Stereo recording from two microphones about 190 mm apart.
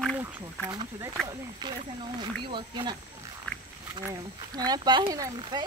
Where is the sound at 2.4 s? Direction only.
25° right (ahead or behind).